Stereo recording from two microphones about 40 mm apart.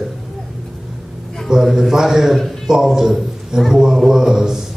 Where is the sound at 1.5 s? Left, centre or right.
Centre.